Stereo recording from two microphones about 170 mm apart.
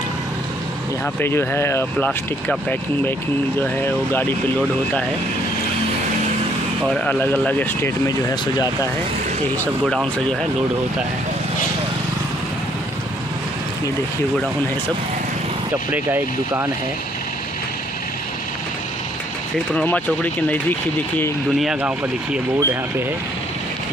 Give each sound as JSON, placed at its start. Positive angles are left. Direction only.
{"t": 1.2, "sound": "speech", "side_deg": 15}
{"t": 6.9, "sound": "speech", "side_deg": 10}
{"t": 15.9, "sound": "speech", "side_deg": -10}
{"t": 19.7, "sound": "speech", "side_deg": 10}
{"t": 21.5, "sound": "speech", "side_deg": -5}
{"t": 22.6, "sound": "speech", "side_deg": -15}